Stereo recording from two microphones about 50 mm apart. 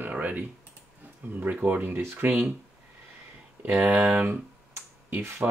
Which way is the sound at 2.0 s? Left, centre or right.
Right.